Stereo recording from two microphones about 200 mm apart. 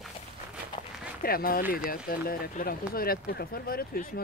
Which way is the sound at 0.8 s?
25° left (ahead or behind).